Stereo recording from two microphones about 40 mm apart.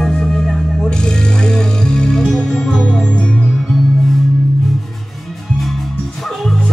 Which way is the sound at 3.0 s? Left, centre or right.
Left.